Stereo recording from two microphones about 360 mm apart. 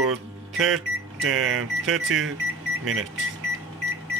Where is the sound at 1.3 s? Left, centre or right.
Right.